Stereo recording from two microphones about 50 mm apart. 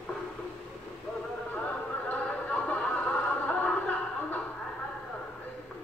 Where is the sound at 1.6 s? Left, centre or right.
Left.